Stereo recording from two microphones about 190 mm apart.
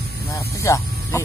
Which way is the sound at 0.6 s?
15° left (ahead or behind).